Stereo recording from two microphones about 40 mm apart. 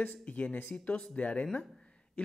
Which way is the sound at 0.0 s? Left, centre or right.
Left.